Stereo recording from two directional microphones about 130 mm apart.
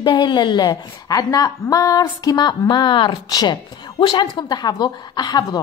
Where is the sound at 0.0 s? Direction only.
35° left (ahead or behind).